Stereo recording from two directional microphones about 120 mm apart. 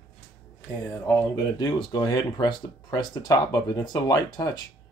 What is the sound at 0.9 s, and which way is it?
Speech, 20° left (ahead or behind).